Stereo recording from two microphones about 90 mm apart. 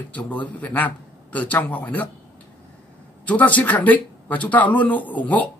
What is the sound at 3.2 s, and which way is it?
A man's voice, 15° left (ahead or behind).